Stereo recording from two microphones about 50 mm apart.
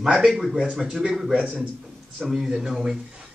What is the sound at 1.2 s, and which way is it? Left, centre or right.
Speech, right.